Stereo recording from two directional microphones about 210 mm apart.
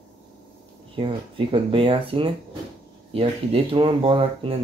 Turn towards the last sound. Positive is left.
turn(degrees=-25)  # may be behind; listen again after turning